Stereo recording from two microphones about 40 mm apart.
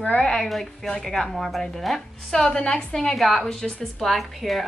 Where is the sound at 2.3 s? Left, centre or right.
Centre.